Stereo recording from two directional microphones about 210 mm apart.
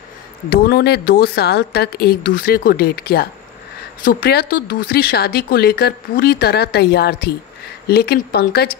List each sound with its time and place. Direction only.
0.5 s speech: 50° left (ahead or behind)